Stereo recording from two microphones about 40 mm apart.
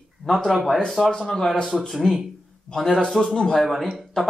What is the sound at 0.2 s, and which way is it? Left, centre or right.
Speech, centre.